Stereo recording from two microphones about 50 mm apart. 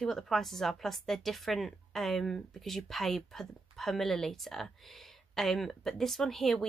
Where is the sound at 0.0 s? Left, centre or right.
Centre.